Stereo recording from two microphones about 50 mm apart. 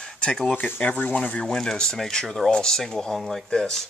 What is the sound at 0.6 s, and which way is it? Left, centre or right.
Speech, left.